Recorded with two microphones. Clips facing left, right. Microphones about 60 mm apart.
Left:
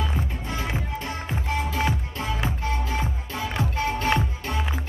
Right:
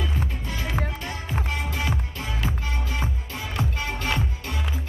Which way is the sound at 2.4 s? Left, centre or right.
Left.